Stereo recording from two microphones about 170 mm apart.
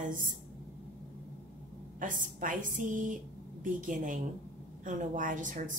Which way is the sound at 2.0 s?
50° right (ahead or behind).